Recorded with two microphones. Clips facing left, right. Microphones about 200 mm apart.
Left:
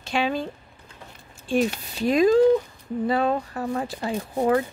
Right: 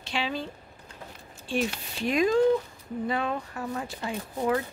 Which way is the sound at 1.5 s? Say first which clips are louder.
Left 6 dB; 40° left (ahead or behind).